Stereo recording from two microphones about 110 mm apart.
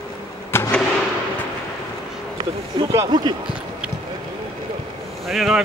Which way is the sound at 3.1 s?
45° right (ahead or behind).